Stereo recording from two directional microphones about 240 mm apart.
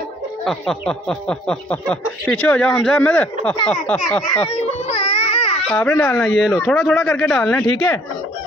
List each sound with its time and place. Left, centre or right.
0.5 s speech: centre
4.5 s baby cry: left
5.7 s speech: centre
6.2 s speech: centre